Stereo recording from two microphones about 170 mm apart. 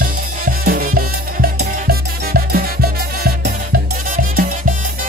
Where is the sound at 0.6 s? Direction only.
60° right (ahead or behind).